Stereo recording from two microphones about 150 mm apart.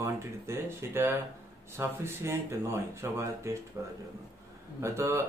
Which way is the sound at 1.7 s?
15° right (ahead or behind).